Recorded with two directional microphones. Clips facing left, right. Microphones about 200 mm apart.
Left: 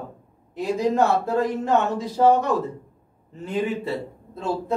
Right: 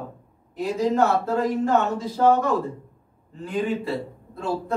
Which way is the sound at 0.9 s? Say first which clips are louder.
Even; 15° left (ahead or behind).